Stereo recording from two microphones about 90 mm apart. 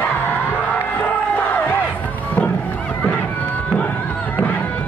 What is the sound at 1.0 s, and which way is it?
Music, 20° left (ahead or behind).